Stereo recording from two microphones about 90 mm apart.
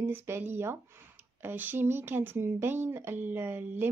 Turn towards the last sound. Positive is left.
turn(degrees=-20)  # may be behind; listen again after turning